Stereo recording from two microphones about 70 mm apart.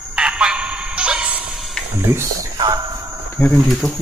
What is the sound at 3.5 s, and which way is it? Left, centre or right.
Speech, centre.